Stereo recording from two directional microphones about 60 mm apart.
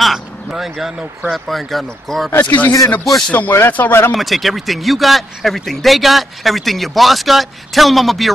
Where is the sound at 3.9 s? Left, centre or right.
Left.